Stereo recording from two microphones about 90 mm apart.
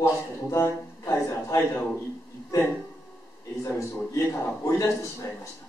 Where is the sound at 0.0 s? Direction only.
30° left (ahead or behind).